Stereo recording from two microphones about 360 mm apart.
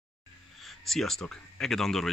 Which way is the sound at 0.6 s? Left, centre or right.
Centre.